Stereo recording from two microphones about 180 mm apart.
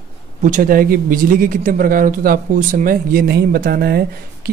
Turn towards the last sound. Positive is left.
turn(degrees=-60)  # may be behind; listen again after turning